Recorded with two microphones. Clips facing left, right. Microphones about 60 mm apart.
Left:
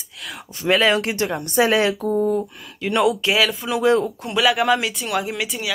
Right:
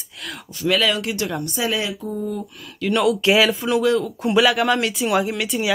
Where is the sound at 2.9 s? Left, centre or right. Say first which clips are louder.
Right 2 dB; centre.